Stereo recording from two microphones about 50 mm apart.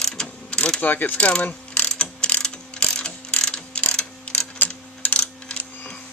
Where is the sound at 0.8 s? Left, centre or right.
Left.